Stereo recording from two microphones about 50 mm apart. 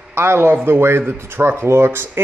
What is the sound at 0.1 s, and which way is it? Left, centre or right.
A man's voice, right.